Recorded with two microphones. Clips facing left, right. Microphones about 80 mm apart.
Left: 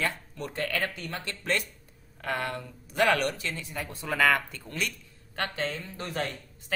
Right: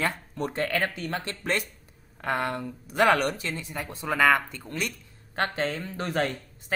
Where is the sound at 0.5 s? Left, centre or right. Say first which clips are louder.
Right 3 dB; right.